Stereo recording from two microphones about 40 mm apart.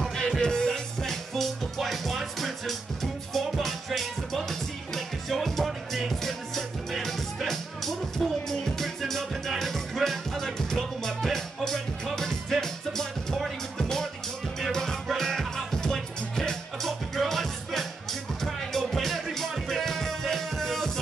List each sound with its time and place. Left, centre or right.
0.0 s music: centre
1.0 s music: centre